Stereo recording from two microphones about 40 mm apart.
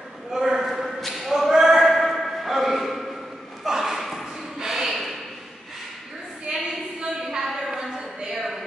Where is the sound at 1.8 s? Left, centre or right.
Centre.